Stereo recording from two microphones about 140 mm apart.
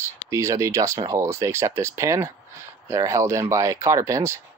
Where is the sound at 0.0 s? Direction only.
20° right (ahead or behind).